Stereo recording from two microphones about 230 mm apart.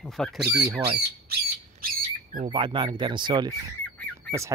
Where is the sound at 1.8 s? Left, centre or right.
Right.